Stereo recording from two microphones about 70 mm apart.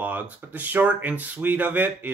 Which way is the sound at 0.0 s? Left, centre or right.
Right.